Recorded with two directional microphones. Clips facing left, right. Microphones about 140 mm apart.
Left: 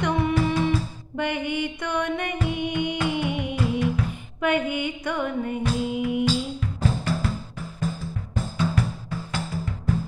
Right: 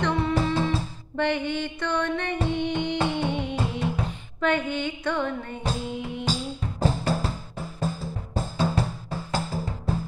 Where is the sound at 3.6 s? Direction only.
30° right (ahead or behind).